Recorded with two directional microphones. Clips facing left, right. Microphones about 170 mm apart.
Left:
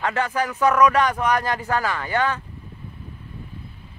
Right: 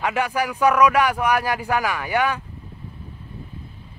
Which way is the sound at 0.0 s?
10° right (ahead or behind).